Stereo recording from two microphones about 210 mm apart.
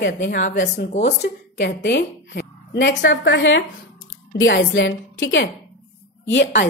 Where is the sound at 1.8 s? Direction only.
55° left (ahead or behind).